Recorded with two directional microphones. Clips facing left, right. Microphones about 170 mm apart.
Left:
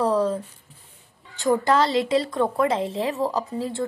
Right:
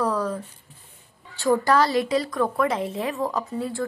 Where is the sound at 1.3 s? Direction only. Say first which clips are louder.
Even; 20° left (ahead or behind).